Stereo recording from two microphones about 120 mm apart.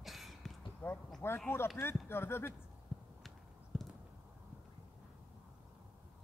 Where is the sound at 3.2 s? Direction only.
Centre (ahead or behind).